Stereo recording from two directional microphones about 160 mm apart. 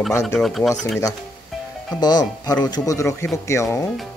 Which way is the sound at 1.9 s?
25° left (ahead or behind).